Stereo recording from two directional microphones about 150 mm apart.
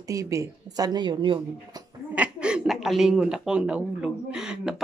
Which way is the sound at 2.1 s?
10° right (ahead or behind).